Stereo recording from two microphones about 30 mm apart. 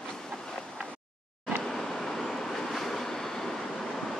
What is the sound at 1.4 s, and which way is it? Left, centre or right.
Vehicle, centre.